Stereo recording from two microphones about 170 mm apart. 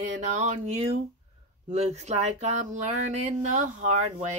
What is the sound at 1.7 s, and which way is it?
Speech, 40° right (ahead or behind).